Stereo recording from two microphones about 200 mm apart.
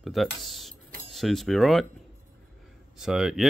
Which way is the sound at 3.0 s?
5° right (ahead or behind).